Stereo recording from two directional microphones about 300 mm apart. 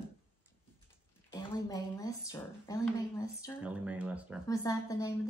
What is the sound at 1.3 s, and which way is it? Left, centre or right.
A woman's voice, centre.